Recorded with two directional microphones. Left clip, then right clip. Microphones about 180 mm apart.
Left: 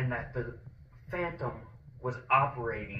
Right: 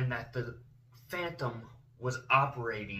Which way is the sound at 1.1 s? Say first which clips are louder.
Left 1 dB; 35° right (ahead or behind).